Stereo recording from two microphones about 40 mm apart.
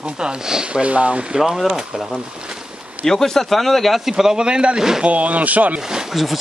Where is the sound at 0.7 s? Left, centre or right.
Right.